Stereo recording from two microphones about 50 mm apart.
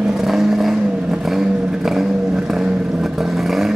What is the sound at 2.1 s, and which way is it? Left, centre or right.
Vehicle, centre.